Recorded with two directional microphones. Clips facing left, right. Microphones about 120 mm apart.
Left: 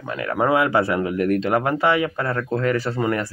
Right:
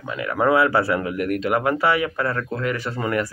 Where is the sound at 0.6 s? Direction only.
20° left (ahead or behind).